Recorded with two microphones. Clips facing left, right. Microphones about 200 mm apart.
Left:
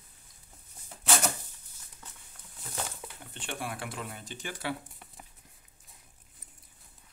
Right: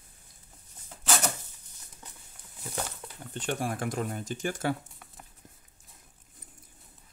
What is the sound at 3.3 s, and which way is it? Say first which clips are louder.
Speech: right 7 dB; 40° right (ahead or behind).